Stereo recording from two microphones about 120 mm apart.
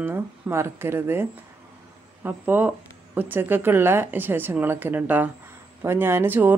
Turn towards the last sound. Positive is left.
turn(degrees=-15)  # may be behind; listen again after turning